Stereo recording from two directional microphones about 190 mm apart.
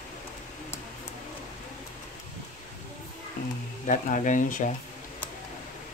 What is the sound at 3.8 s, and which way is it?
Speech, 40° left (ahead or behind).